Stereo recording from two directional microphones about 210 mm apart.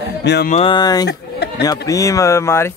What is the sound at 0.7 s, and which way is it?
Speech, 20° left (ahead or behind).